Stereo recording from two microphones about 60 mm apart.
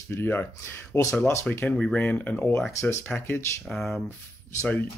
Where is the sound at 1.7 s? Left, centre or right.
Centre.